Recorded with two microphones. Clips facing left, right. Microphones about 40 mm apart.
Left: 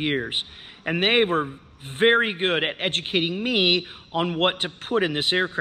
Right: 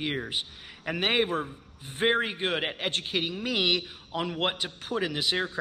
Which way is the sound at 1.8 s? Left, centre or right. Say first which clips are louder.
Left 7 dB; left.